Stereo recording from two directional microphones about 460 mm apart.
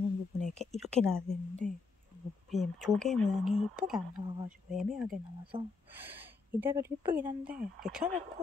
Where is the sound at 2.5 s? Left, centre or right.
Centre.